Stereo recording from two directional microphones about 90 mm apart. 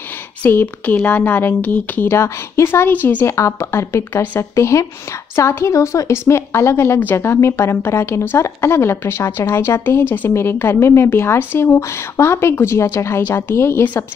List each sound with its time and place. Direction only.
0.4 s a woman's voice: 20° left (ahead or behind)
2.1 s a woman's voice: 30° left (ahead or behind)